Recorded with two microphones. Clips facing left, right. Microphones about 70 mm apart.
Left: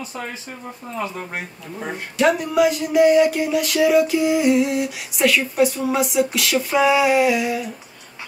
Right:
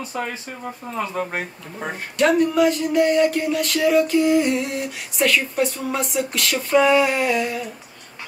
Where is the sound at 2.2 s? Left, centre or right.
Centre.